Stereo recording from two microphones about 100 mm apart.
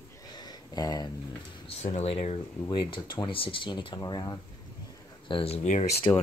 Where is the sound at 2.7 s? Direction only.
55° left (ahead or behind).